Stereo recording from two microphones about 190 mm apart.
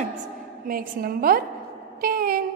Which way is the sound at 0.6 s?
50° right (ahead or behind).